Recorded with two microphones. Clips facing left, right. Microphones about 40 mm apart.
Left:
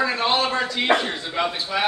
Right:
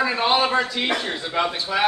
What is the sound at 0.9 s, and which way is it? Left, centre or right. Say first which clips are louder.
Speech: left 8 dB; left.